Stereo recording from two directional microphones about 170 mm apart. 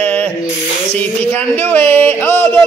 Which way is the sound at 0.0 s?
10° left (ahead or behind).